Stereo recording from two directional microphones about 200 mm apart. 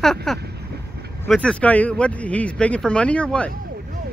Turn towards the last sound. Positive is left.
turn(degrees=5)  # may be behind; listen again after turning